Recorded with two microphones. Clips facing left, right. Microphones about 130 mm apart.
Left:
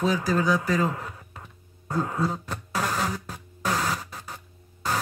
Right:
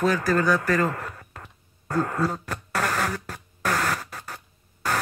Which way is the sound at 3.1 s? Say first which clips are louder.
Right 2 dB; 60° right (ahead or behind).